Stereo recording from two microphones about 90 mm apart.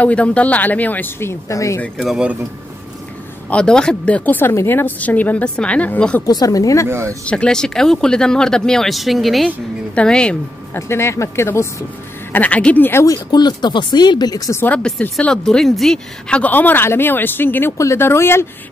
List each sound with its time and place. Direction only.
0.0 s speech: 15° left (ahead or behind)
1.5 s a woman's voice: 35° left (ahead or behind)
2.0 s speech: 10° right (ahead or behind)
3.4 s speech: 10° left (ahead or behind)
6.2 s a woman's voice: 40° left (ahead or behind)
6.9 s speech: 30° right (ahead or behind)
7.2 s speech: 10° left (ahead or behind)
9.9 s speech: 10° left (ahead or behind)
10.7 s speech: 30° left (ahead or behind)
12.3 s speech: 15° left (ahead or behind)
13.0 s speech: 45° left (ahead or behind)
14.6 s speech: 15° left (ahead or behind)